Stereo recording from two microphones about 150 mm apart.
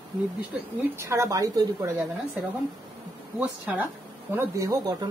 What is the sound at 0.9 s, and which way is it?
Speech, 20° right (ahead or behind).